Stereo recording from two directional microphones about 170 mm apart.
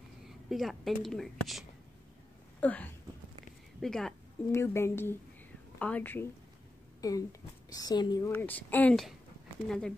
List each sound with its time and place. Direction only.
0.2 s speech: centre (ahead or behind)
4.5 s speech: 15° left (ahead or behind)
7.0 s a woman's voice: 20° left (ahead or behind)
8.4 s speech: 10° left (ahead or behind)